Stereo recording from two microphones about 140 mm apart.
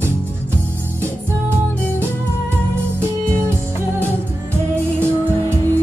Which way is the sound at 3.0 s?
20° right (ahead or behind).